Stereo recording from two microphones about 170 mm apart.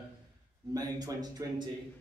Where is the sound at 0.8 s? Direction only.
20° right (ahead or behind).